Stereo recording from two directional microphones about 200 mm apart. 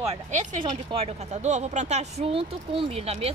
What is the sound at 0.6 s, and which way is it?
Speech, 25° right (ahead or behind).